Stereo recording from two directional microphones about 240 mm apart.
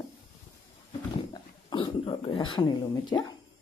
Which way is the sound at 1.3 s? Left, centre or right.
Centre.